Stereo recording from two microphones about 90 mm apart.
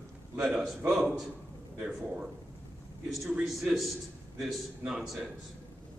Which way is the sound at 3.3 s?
10° right (ahead or behind).